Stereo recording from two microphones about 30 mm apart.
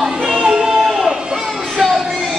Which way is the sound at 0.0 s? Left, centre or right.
Right.